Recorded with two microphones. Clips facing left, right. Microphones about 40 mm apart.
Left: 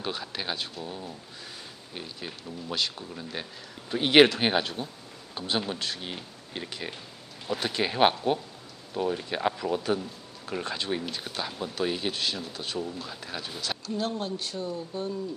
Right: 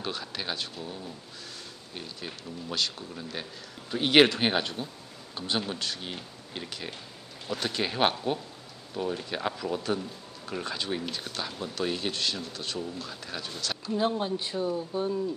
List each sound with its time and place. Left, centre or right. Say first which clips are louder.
0.0 s speech: left 1 dB; centre
13.8 s speech: right 4 dB; centre